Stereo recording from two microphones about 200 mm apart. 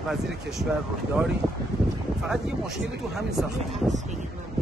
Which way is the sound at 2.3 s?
Centre (ahead or behind).